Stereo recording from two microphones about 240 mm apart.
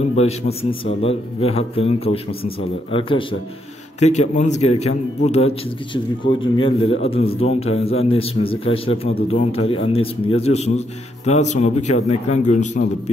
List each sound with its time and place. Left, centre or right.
0.1 s a man's voice: left